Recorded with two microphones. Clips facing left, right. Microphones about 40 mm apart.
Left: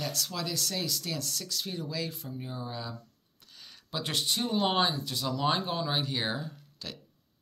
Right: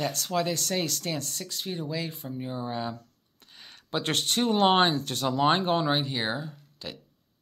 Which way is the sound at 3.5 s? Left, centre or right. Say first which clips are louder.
Right 6 dB; right.